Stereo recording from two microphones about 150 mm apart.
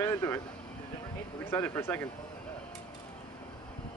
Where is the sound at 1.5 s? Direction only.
15° left (ahead or behind).